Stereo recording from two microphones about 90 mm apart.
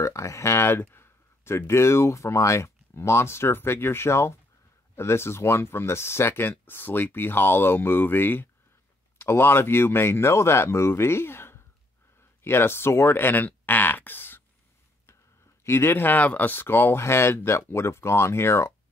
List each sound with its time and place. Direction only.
0.0 s speech: 35° left (ahead or behind)
12.4 s a sound: 25° left (ahead or behind)
15.6 s speech: 25° left (ahead or behind)